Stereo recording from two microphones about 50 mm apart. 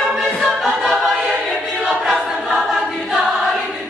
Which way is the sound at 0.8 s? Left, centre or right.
Centre.